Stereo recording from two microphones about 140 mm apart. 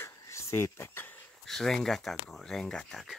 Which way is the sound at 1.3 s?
Centre (ahead or behind).